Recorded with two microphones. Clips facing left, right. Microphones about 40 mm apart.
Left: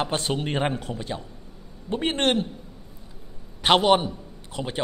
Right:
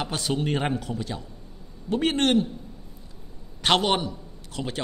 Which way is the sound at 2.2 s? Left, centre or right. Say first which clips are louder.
Even; left.